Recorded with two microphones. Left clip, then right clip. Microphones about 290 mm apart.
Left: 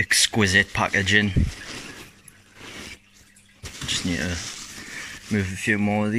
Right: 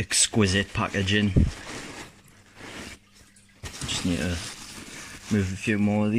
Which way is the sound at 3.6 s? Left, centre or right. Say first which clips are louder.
Left 3 dB; centre.